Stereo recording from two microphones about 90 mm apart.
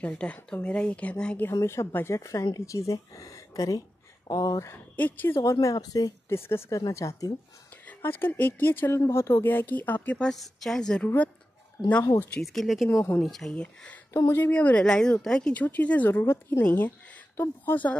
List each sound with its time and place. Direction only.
0.0 s speech: 15° left (ahead or behind)
1.5 s a woman's voice: 30° left (ahead or behind)
4.9 s speech: 20° left (ahead or behind)
5.4 s a woman's voice: 35° left (ahead or behind)
6.2 s a woman's voice: 30° left (ahead or behind)
7.8 s speech: 25° left (ahead or behind)
10.3 s speech: centre (ahead or behind)
12.4 s speech: centre (ahead or behind)
14.1 s speech: 25° left (ahead or behind)
14.5 s speech: 15° left (ahead or behind)